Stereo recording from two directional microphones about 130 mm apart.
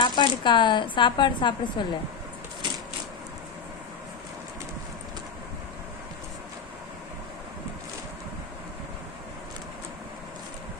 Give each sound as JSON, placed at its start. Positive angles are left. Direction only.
{"t": 0.0, "sound": "a woman's voice", "side_deg": 40}